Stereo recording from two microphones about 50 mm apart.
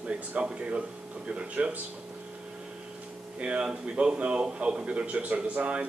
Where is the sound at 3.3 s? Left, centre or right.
Right.